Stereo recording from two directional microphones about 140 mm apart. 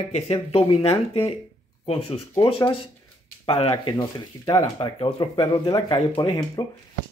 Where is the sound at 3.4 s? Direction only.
40° left (ahead or behind).